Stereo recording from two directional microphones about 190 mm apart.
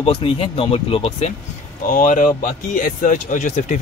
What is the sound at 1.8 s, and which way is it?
Speech, 45° left (ahead or behind).